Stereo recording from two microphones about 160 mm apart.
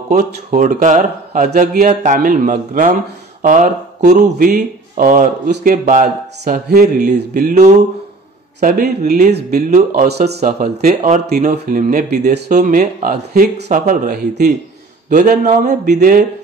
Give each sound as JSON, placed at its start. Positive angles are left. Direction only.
{"t": 0.1, "sound": "a man's voice", "side_deg": -55}
{"t": 7.4, "sound": "speech", "side_deg": -45}
{"t": 9.3, "sound": "speech", "side_deg": -80}
{"t": 9.7, "sound": "speech", "side_deg": -50}
{"t": 11.5, "sound": "speech", "side_deg": -80}
{"t": 11.9, "sound": "a man's voice", "side_deg": -55}
{"t": 14.1, "sound": "speech", "side_deg": -80}
{"t": 15.0, "sound": "speech", "side_deg": -55}